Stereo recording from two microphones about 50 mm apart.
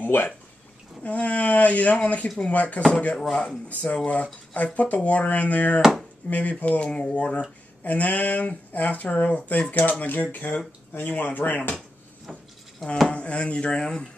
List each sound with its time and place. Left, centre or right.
0.0 s speech: left
1.0 s speech: left
3.2 s speech: centre
3.4 s speech: left
5.8 s speech: centre
6.6 s speech: left
13.1 s speech: left